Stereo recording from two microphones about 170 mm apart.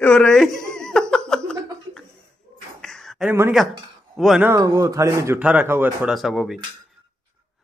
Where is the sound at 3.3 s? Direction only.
10° right (ahead or behind).